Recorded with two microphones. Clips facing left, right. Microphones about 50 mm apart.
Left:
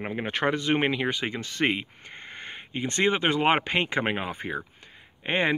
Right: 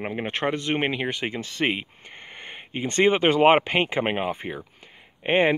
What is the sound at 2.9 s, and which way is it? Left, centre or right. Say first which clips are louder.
Speech: right 5 dB; right.